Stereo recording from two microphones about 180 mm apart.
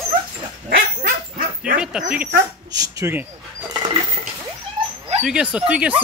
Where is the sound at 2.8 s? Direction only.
15° right (ahead or behind).